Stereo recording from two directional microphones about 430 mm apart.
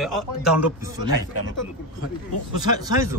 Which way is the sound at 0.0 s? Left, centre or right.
Centre.